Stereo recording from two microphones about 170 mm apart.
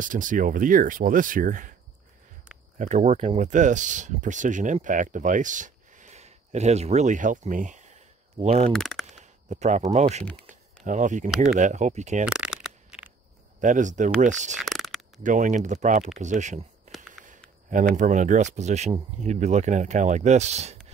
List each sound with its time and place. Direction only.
0.0 s speech: 50° right (ahead or behind)
2.8 s speech: 40° right (ahead or behind)
8.7 s speech: centre (ahead or behind)
9.1 s speech: 45° right (ahead or behind)
10.5 s a sound: 45° right (ahead or behind)
11.2 s speech: centre (ahead or behind)
11.5 s speech: 45° right (ahead or behind)
12.3 s a sound: 5° right (ahead or behind)
13.6 s speech: 50° right (ahead or behind)
14.6 s a sound: centre (ahead or behind)
15.2 s speech: 50° right (ahead or behind)
17.9 s speech: 45° right (ahead or behind)